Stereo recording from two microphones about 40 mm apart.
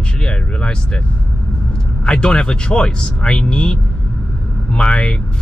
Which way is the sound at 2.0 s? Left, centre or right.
Left.